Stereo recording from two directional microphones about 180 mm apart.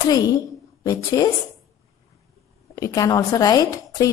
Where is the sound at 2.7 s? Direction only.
20° left (ahead or behind).